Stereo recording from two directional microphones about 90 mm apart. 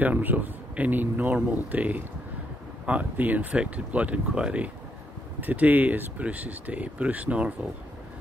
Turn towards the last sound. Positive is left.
turn(degrees=-15)  # may be behind; listen again after turning